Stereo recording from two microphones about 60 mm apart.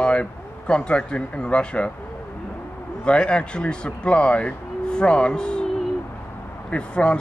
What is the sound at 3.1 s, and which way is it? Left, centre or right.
A man's voice, centre.